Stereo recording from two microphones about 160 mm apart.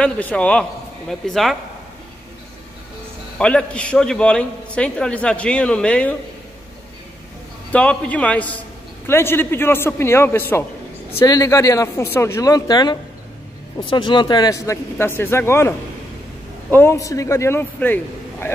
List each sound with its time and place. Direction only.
0.0 s a man's voice: 10° left (ahead or behind)
3.3 s a man's voice: 5° left (ahead or behind)
7.7 s a man's voice: 5° left (ahead or behind)
16.7 s a man's voice: 15° left (ahead or behind)